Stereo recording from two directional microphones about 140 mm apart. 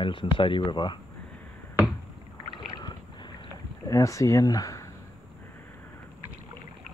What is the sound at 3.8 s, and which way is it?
Speech, 25° left (ahead or behind).